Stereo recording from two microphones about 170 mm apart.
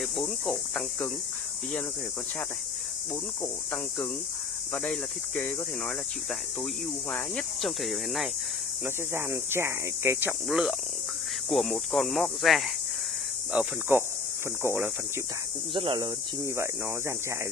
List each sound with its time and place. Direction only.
0.2 s cricket: 5° left (ahead or behind)
4.7 s speech: 5° left (ahead or behind)
7.1 s cricket: 5° left (ahead or behind)
8.8 s speech: 15° right (ahead or behind)
10.5 s cricket: centre (ahead or behind)
13.5 s speech: 10° right (ahead or behind)
15.7 s speech: 30° right (ahead or behind)